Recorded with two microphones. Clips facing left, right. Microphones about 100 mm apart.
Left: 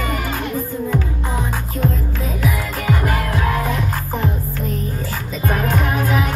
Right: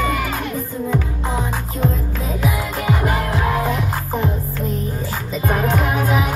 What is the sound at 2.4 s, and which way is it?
Music, 20° right (ahead or behind).